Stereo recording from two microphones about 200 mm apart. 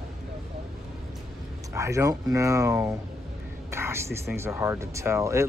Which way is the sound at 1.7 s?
15° right (ahead or behind).